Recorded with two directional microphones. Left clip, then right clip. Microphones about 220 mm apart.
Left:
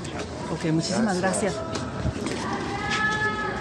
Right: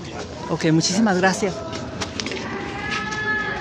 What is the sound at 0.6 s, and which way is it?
Speech, 50° right (ahead or behind).